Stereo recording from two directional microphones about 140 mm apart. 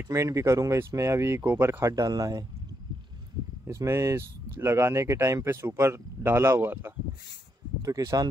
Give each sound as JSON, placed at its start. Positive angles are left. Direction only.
{"t": 0.0, "sound": "speech", "side_deg": -20}
{"t": 3.6, "sound": "speech", "side_deg": -20}